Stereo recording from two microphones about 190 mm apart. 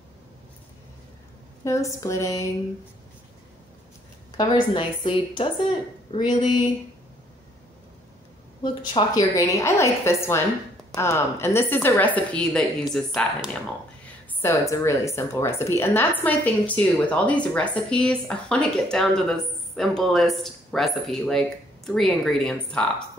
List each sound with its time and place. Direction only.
1.6 s a woman's voice: 15° left (ahead or behind)
4.4 s a woman's voice: 25° left (ahead or behind)
8.6 s a woman's voice: 20° left (ahead or behind); by 13.5 s centre (ahead or behind)
14.4 s a woman's voice: 15° left (ahead or behind)